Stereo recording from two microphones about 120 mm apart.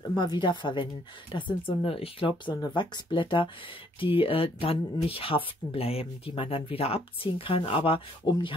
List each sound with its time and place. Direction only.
0.1 s speech: 40° left (ahead or behind)
2.5 s speech: 35° left (ahead or behind)